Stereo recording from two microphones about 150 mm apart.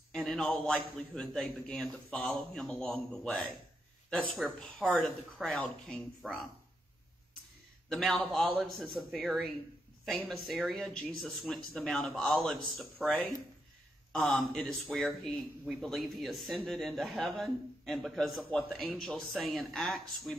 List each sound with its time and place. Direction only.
0.1 s speech: 5° left (ahead or behind)
7.9 s speech: centre (ahead or behind)
14.1 s speech: 5° left (ahead or behind)